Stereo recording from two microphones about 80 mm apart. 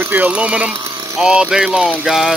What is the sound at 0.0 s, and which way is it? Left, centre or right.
Speech, right.